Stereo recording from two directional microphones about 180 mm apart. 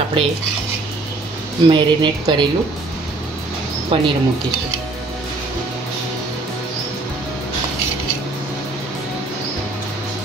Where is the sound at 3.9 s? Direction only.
30° right (ahead or behind).